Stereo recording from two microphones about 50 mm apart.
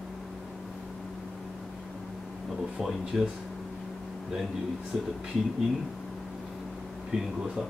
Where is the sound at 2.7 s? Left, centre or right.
Centre.